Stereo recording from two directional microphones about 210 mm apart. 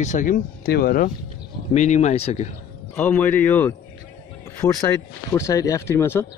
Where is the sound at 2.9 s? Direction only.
10° left (ahead or behind).